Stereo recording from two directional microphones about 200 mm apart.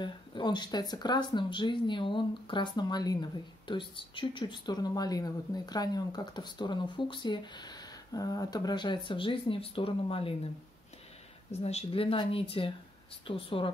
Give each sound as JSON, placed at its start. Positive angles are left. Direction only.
{"t": 0.0, "sound": "speech", "side_deg": 25}
{"t": 11.5, "sound": "speech", "side_deg": 30}